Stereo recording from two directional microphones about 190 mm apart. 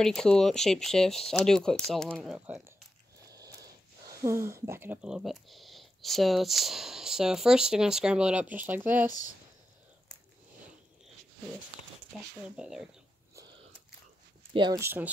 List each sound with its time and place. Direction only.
0.0 s speech: 5° left (ahead or behind)
2.3 s speech: 10° right (ahead or behind)
3.3 s a sound: 20° right (ahead or behind)
4.1 s speech: 15° right (ahead or behind)
12.2 s speech: 5° right (ahead or behind)
14.5 s speech: 25° right (ahead or behind)
14.8 s speech: 10° right (ahead or behind)